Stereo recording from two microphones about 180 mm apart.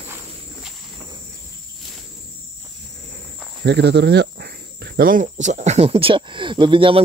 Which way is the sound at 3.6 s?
65° right (ahead or behind).